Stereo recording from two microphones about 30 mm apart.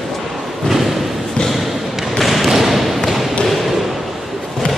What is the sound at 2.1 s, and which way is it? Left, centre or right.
Thump, centre.